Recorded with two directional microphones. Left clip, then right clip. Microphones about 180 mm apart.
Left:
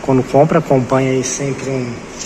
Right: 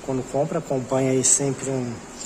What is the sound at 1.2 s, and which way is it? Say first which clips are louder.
Speech: left 3 dB; 35° right (ahead or behind).